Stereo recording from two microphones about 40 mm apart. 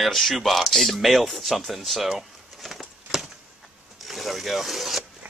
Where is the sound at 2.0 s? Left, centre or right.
Centre.